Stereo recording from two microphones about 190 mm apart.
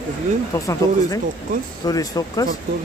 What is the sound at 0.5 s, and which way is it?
Speech, 15° left (ahead or behind).